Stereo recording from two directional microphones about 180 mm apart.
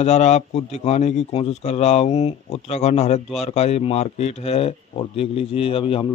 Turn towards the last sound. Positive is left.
turn(degrees=30)  # may be behind; listen again after turning